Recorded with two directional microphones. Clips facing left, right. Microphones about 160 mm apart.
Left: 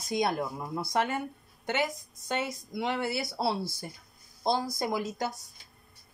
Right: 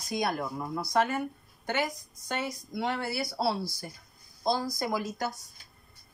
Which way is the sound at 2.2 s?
20° left (ahead or behind).